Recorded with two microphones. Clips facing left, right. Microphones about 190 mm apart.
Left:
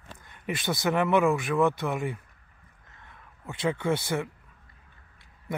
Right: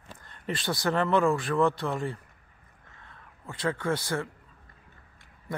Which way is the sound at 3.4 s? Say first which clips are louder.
Left 2 dB; 20° left (ahead or behind).